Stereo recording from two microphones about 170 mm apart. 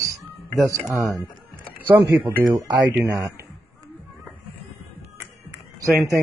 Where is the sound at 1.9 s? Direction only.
10° right (ahead or behind).